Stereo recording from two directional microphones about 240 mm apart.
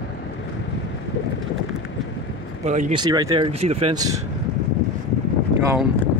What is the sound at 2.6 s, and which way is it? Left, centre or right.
Speech, right.